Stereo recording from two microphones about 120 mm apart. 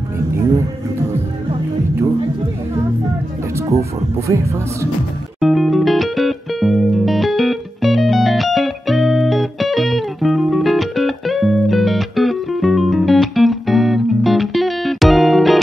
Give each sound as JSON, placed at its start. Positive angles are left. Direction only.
{"t": 3.5, "sound": "music", "side_deg": -25}
{"t": 4.3, "sound": "speech", "side_deg": -25}
{"t": 5.4, "sound": "music", "side_deg": 0}